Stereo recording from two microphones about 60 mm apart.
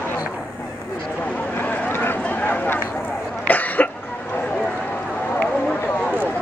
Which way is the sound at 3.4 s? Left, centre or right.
Left.